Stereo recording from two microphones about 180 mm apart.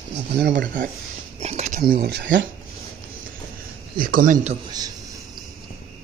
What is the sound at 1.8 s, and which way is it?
Speech, 60° right (ahead or behind).